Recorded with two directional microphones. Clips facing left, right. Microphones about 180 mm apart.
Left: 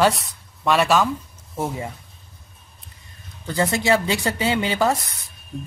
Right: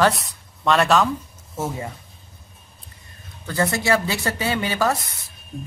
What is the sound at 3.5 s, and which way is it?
A woman's voice, 15° left (ahead or behind).